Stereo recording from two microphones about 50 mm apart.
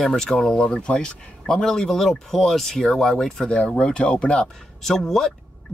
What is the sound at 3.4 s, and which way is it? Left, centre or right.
Speech, left.